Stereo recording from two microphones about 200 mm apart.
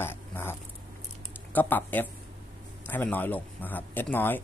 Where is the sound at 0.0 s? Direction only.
10° left (ahead or behind).